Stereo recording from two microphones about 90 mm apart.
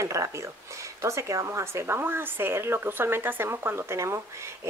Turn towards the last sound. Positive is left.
turn(degrees=-30)  # may be behind; listen again after turning